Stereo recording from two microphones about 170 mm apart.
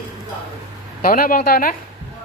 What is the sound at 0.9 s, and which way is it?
Speech, 55° left (ahead or behind).